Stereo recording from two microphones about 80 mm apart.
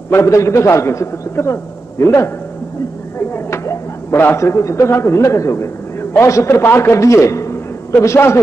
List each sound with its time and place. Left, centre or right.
0.1 s a man's voice: left